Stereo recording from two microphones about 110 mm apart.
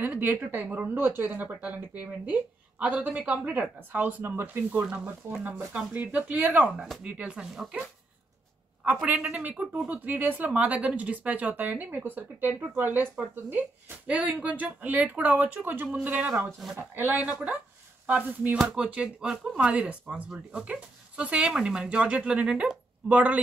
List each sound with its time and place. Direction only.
0.0 s speech: 15° right (ahead or behind)
9.0 s speech: 10° right (ahead or behind)